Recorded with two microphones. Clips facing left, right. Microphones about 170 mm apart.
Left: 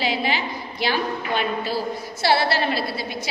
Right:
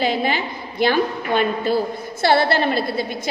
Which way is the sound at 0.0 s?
50° right (ahead or behind).